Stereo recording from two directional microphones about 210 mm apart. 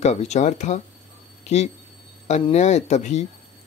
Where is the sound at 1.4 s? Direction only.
30° left (ahead or behind).